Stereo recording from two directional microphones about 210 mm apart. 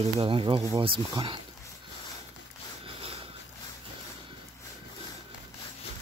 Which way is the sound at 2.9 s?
25° right (ahead or behind).